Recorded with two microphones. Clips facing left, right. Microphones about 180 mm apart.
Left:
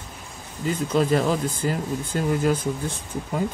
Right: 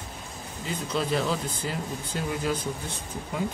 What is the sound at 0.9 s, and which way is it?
Speech, 45° left (ahead or behind).